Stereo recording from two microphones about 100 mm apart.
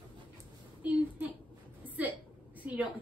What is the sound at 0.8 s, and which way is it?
Speech, 15° right (ahead or behind).